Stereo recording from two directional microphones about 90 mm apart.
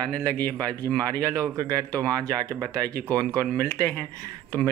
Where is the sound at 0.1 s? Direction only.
20° left (ahead or behind).